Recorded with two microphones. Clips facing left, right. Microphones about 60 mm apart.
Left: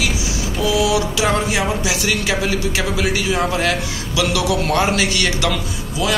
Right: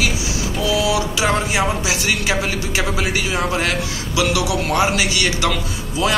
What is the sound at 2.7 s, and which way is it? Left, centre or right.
A man's voice, right.